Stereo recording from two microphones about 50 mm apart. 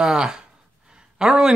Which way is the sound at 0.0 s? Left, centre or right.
Centre.